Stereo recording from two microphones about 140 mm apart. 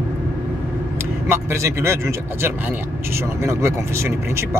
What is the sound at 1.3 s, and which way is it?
A man's voice, 20° right (ahead or behind).